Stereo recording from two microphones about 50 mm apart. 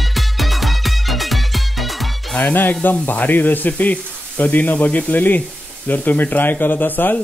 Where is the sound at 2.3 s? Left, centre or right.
Left.